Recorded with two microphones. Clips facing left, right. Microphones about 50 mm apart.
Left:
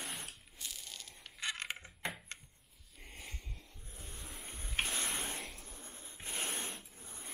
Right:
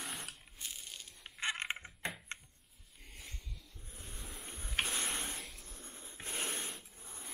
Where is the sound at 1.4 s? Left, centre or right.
Right.